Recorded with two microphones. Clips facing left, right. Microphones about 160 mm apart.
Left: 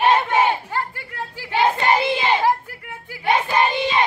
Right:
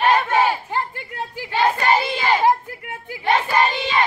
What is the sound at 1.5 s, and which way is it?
Child singing, 20° left (ahead or behind).